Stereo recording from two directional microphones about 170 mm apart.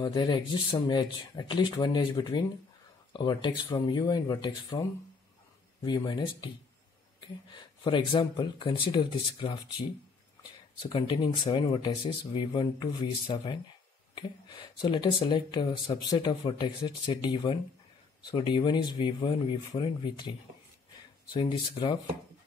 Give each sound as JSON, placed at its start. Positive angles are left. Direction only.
{"t": 0.0, "sound": "speech", "side_deg": 25}